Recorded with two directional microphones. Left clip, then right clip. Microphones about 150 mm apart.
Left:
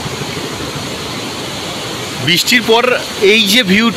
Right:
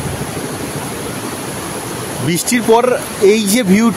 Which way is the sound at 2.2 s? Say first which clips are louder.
Left 4 dB; 25° right (ahead or behind).